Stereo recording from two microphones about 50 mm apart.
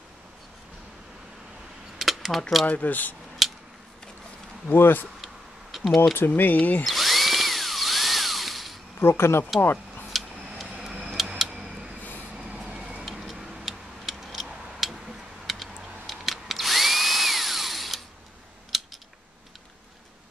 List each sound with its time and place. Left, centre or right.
2.0 s mechanisms: centre
2.6 s speech: left
4.7 s speech: left
5.2 s a sound: centre
6.1 s speech: left
6.9 s drill: centre
9.0 s speech: left
9.6 s speech: left
11.1 s tick-tock: centre
12.4 s vehicle: centre
13.0 s tick-tock: centre
14.0 s a sound: centre
16.1 s drill: centre
18.7 s scissors: centre